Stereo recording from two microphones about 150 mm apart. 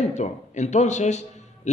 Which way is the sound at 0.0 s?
50° left (ahead or behind).